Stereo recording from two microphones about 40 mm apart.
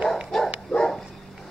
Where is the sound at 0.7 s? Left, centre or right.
Centre.